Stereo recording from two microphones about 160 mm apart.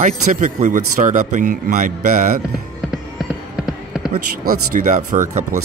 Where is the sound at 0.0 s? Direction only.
50° right (ahead or behind).